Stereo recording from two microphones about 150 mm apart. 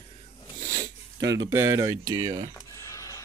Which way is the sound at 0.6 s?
55° right (ahead or behind).